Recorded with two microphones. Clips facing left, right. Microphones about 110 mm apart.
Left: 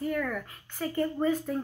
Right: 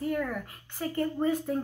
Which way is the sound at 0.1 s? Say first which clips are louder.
Even; 30° right (ahead or behind).